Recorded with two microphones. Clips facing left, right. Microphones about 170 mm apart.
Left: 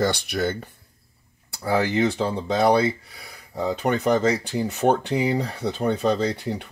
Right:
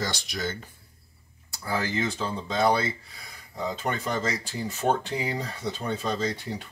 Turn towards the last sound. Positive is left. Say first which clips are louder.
# left 5 dB
turn(degrees=65)  # may be behind; listen again after turning